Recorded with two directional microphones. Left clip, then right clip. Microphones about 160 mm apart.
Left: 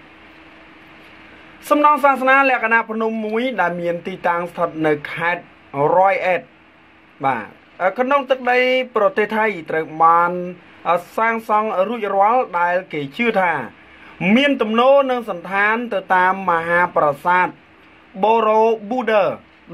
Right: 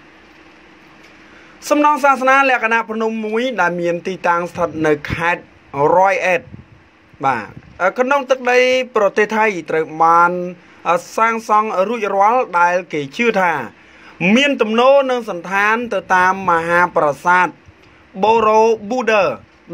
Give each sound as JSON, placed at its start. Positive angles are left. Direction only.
{"t": 1.6, "sound": "speech", "side_deg": -20}